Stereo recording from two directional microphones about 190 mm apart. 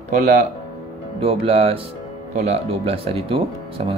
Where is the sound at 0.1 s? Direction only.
40° right (ahead or behind).